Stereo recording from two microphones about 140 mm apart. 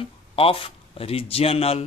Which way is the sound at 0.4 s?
40° left (ahead or behind).